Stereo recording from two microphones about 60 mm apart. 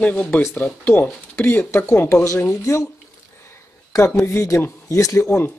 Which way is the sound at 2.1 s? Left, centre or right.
Left.